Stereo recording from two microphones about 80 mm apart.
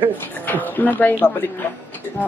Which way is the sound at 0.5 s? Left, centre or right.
Left.